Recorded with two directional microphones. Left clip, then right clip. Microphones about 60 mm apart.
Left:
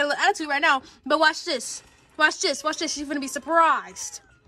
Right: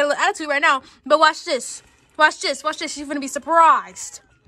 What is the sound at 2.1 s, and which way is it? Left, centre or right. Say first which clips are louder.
Speech: right 4 dB; left.